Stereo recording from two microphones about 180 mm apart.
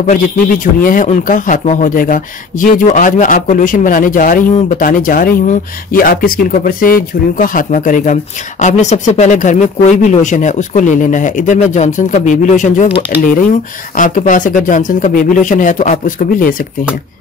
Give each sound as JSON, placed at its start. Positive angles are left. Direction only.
{"t": 0.8, "sound": "speech", "side_deg": 50}